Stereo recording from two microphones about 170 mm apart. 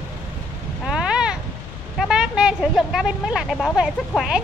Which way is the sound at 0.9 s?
5° right (ahead or behind).